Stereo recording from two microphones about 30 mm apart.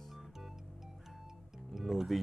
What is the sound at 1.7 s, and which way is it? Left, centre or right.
Speech, centre.